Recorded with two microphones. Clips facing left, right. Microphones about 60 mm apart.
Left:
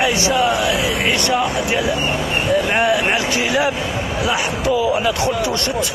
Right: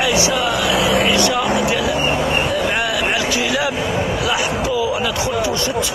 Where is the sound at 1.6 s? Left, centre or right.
Left.